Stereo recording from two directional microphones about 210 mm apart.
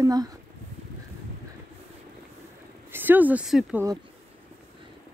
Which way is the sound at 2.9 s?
10° right (ahead or behind).